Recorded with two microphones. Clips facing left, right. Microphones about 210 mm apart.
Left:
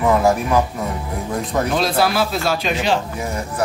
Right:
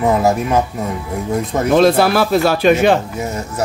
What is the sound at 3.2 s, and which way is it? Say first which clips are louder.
Speech: right 2 dB; 25° right (ahead or behind).